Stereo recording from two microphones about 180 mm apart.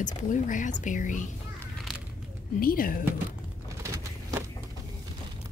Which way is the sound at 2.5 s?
55° left (ahead or behind).